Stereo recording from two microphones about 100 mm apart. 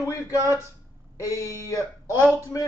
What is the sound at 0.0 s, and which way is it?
A man's voice, 35° left (ahead or behind).